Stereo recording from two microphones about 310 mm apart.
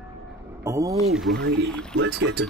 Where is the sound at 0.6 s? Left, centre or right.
Centre.